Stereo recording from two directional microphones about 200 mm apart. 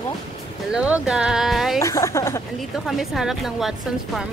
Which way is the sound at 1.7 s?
15° left (ahead or behind).